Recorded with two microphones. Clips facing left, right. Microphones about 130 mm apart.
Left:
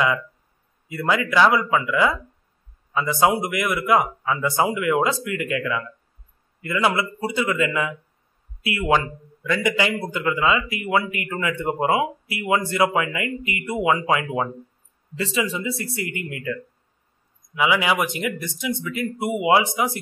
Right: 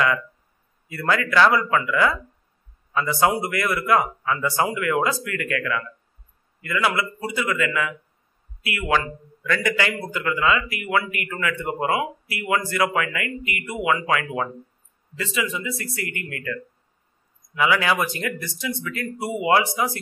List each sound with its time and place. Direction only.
0.8 s a man's voice: 20° left (ahead or behind)
2.9 s a man's voice: 15° left (ahead or behind)
17.6 s speech: 15° left (ahead or behind)